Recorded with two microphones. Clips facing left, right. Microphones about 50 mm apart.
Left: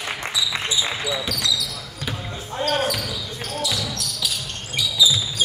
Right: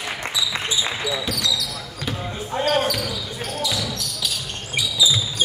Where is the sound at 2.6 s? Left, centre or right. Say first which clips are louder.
Right 2 dB; centre.